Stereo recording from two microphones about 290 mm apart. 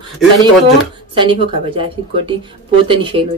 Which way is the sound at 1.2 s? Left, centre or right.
Centre.